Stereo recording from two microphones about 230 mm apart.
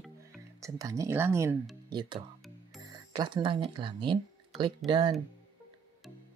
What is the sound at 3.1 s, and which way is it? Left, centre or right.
Speech, centre.